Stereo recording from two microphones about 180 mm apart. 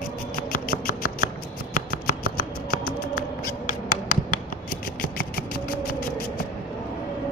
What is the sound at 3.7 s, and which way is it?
Hands, 45° left (ahead or behind).